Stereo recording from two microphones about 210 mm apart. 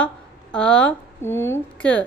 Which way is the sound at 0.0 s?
5° left (ahead or behind).